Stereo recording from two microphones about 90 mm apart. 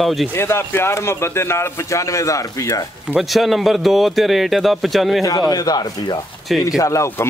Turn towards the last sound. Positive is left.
turn(degrees=35)  # may be behind; listen again after turning